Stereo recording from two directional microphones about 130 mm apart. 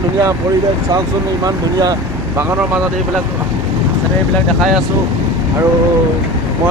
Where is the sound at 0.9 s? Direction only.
30° right (ahead or behind).